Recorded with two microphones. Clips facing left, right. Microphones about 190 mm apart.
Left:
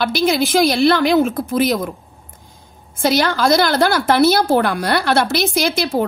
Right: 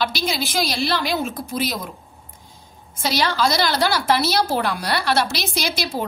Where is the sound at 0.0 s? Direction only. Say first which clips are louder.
Left 7 dB; 55° left (ahead or behind).